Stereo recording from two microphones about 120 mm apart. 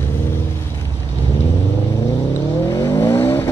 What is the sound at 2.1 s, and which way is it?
Vehicle, 25° left (ahead or behind).